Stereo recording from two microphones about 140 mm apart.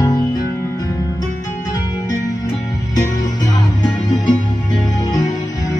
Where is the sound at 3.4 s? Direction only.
30° left (ahead or behind).